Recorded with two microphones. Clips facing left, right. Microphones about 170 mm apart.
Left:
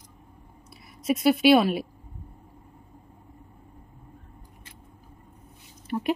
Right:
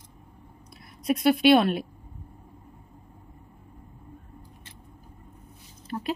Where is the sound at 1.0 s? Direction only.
Centre (ahead or behind).